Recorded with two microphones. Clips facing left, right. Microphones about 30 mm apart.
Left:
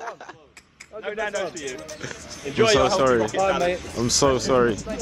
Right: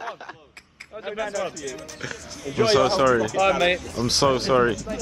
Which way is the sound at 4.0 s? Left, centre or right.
Centre.